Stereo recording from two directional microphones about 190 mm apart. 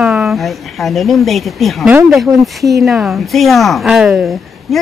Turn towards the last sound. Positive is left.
turn(degrees=-5)  # may be behind; listen again after turning